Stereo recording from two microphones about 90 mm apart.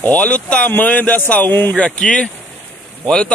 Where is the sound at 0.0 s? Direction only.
15° left (ahead or behind).